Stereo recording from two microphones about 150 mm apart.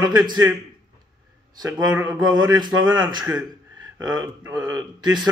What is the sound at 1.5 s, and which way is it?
Speech, 25° right (ahead or behind).